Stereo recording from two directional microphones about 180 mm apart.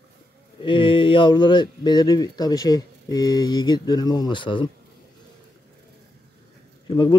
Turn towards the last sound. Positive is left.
turn(degrees=25)  # may be behind; listen again after turning